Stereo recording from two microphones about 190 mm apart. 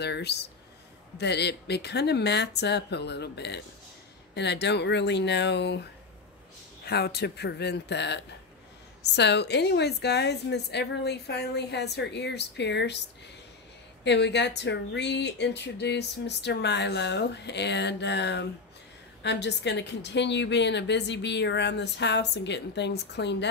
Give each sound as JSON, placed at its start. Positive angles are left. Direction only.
{"t": 0.0, "sound": "speech", "side_deg": 60}
{"t": 14.0, "sound": "speech", "side_deg": 65}